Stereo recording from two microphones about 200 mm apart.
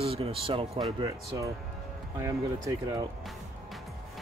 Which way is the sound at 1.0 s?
15° right (ahead or behind).